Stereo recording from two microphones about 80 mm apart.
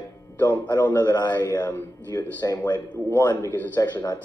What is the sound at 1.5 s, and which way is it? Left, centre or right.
Speech, left.